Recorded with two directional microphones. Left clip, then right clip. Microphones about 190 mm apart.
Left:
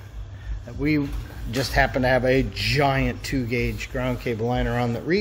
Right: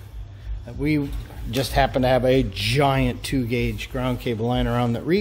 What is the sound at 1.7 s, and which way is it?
Speech, 20° right (ahead or behind).